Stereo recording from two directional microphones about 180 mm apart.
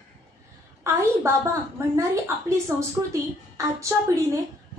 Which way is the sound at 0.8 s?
15° right (ahead or behind).